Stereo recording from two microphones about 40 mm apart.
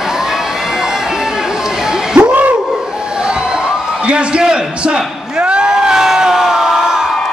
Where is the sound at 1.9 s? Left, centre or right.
Right.